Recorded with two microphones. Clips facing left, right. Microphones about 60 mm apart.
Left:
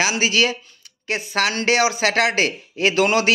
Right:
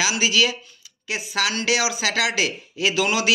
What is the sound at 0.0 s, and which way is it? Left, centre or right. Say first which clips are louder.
Speech: left 2 dB; left.